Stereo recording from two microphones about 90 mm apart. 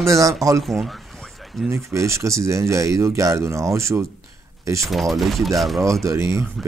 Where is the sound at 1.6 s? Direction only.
30° right (ahead or behind).